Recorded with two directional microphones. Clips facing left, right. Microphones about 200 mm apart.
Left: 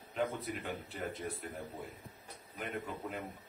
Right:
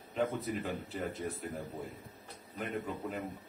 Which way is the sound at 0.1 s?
Centre (ahead or behind).